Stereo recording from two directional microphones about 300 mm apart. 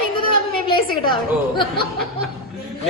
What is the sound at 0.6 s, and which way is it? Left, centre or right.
A woman's voice, centre.